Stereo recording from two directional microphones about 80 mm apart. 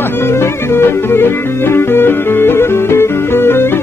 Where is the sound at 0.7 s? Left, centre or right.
Left.